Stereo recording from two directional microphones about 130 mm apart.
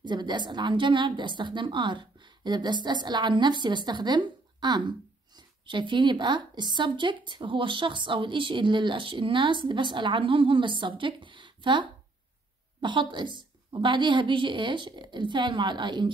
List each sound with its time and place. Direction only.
0.0 s a woman's voice: 35° right (ahead or behind)